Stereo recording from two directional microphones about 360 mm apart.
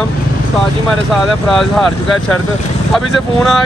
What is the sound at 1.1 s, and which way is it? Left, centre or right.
Speech, centre.